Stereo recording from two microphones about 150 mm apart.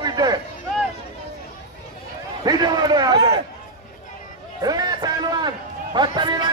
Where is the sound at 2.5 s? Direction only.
25° right (ahead or behind).